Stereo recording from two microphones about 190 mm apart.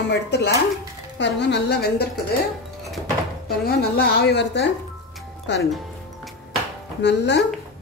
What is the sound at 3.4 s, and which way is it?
A woman's voice, 55° left (ahead or behind).